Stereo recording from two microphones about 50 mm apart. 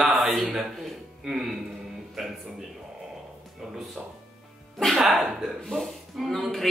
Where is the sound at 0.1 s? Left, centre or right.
Centre.